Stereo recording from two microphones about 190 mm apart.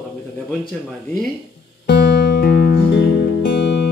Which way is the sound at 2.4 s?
50° left (ahead or behind).